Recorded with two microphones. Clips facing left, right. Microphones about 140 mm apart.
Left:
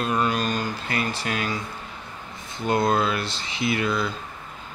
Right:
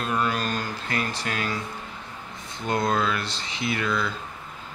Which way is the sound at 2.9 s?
15° left (ahead or behind).